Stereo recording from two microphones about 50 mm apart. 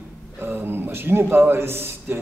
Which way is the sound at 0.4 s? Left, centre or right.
Right.